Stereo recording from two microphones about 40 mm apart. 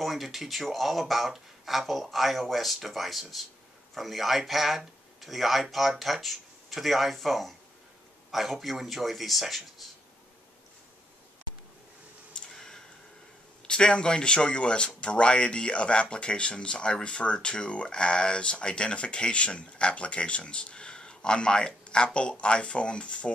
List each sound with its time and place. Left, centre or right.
0.0 s speech: centre
12.5 s a sound: centre
13.7 s speech: left